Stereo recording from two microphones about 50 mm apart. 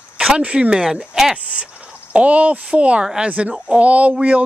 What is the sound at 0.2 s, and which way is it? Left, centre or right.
Speech, right.